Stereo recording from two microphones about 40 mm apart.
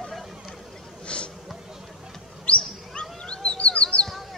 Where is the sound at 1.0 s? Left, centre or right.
Left.